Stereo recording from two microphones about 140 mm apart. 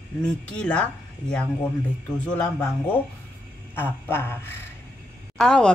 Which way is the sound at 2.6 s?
15° left (ahead or behind).